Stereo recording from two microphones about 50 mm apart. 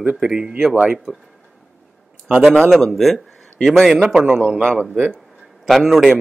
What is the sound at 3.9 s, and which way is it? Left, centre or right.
Speech, right.